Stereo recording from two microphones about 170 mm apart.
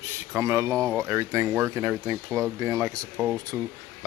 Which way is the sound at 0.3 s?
15° right (ahead or behind).